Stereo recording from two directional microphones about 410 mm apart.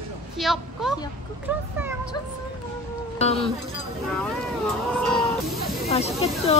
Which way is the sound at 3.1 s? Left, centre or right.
Centre.